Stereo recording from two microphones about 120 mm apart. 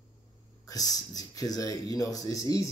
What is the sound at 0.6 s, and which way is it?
Speech, 30° left (ahead or behind).